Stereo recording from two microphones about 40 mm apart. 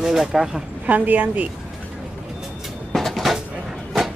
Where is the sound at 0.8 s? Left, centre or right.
Right.